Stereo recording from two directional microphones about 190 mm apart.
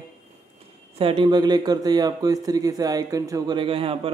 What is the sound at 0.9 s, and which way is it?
Speech, 30° right (ahead or behind).